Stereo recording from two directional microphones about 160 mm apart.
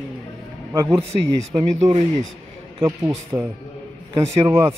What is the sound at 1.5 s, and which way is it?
Speech, 40° right (ahead or behind).